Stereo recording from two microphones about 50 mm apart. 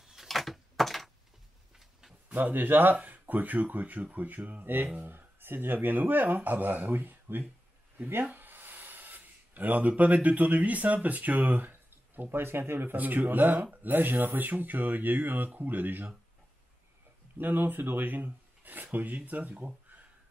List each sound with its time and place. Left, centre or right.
0.0 s a sound: centre
0.3 s door: centre
1.8 s a sound: centre
2.3 s speech: right
12.9 s speech: right
17.4 s speech: right